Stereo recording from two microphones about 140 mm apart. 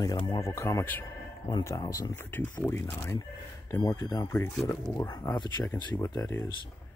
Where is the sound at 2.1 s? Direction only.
15° left (ahead or behind).